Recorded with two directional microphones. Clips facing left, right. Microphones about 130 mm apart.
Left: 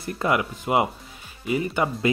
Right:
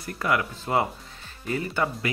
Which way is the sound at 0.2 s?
20° left (ahead or behind).